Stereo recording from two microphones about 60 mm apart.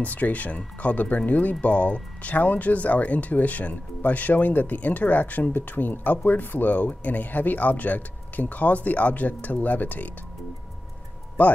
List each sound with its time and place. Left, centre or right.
0.0 s speech: left
11.4 s speech: left